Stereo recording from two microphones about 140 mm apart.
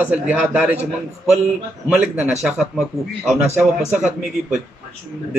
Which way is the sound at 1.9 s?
10° right (ahead or behind).